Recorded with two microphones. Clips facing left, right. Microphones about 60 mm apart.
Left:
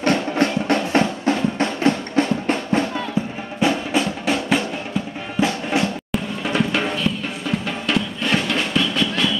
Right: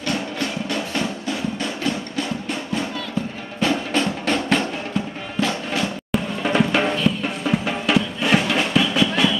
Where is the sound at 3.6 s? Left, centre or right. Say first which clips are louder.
Left 1 dB; centre.